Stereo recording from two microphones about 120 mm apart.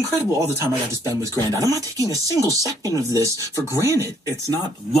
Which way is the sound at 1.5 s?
30° right (ahead or behind).